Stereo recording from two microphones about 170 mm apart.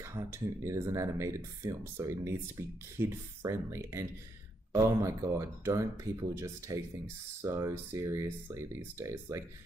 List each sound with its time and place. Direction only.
0.0 s speech: 15° right (ahead or behind)